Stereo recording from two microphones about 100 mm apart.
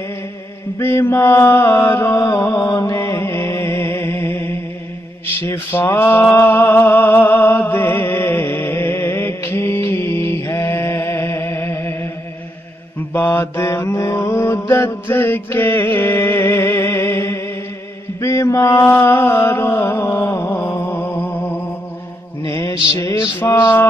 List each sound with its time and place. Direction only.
0.7 s mantra: 25° left (ahead or behind)
13.1 s mantra: 25° left (ahead or behind)
20.8 s music: 20° left (ahead or behind)
22.5 s mantra: 30° left (ahead or behind)